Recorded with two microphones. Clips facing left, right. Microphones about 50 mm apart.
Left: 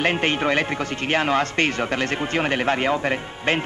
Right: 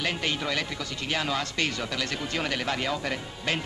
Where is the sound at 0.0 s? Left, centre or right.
Left.